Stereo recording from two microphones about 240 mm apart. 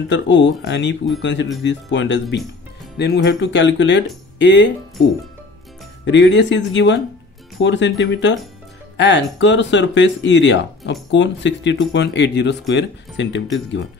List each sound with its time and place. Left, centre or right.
0.1 s speech: left
6.0 s speech: left